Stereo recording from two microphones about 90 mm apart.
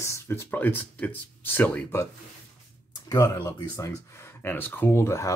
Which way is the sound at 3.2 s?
40° left (ahead or behind).